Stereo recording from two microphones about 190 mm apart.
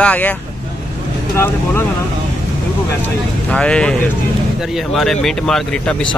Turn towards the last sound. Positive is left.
turn(degrees=5)  # may be behind; listen again after turning